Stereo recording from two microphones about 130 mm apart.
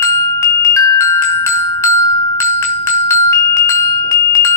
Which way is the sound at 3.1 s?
25° left (ahead or behind).